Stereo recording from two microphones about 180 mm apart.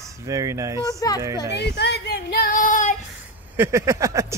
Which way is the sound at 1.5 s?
65° left (ahead or behind).